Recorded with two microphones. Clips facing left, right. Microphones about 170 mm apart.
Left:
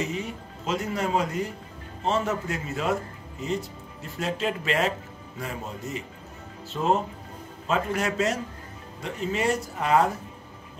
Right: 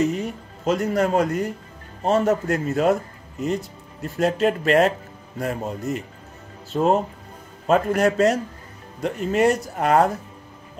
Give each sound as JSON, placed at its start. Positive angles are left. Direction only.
{"t": 0.0, "sound": "speech", "side_deg": -50}